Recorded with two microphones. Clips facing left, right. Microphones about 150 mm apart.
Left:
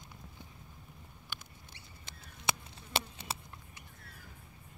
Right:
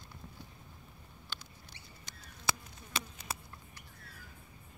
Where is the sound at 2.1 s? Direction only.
30° left (ahead or behind).